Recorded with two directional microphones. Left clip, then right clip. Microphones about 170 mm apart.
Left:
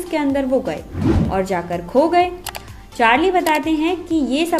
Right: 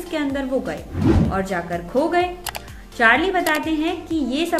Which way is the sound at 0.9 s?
Centre (ahead or behind).